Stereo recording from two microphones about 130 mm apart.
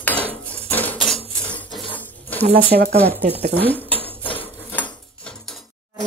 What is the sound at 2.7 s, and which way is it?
Speech, 90° right.